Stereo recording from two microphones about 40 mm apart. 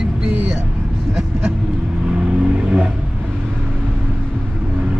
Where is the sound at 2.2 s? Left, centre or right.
Right.